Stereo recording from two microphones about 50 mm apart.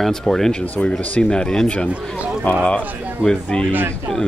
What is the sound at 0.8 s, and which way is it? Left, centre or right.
Speech, centre.